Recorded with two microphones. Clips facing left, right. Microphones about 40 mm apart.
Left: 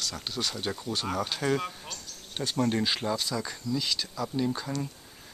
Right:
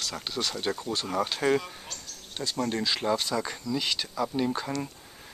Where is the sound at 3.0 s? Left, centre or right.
Centre.